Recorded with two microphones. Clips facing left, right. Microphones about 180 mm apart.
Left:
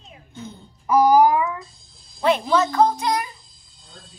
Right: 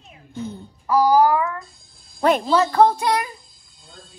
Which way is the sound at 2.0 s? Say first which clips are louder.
Right 4 dB; 55° right (ahead or behind).